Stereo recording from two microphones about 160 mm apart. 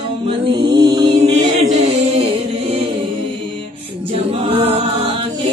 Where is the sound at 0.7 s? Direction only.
25° right (ahead or behind).